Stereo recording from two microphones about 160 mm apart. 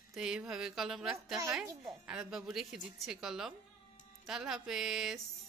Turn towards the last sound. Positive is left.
turn(degrees=0)  # may be behind; listen again after turning